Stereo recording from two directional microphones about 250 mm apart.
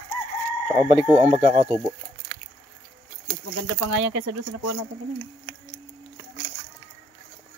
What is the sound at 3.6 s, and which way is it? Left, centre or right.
Speech, right.